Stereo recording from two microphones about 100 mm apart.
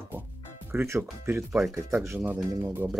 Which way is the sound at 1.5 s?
5° right (ahead or behind).